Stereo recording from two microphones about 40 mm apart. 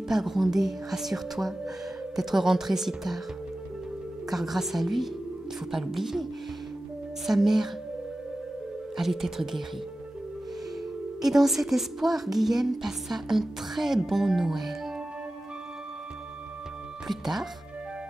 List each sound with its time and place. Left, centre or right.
0.1 s a woman's voice: centre
4.3 s a woman's voice: centre
7.2 s a woman's voice: centre
8.9 s a woman's voice: centre
11.1 s a woman's voice: centre
17.1 s speech: centre